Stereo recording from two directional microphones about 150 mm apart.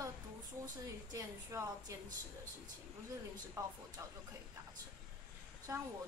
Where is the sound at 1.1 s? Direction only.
20° right (ahead or behind).